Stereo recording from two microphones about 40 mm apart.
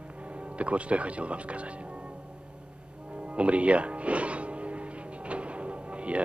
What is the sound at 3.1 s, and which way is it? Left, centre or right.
Music, right.